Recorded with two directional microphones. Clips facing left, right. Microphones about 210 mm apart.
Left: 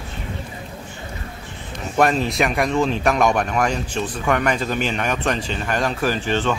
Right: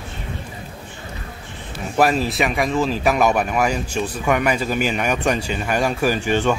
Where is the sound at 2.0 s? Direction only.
5° right (ahead or behind).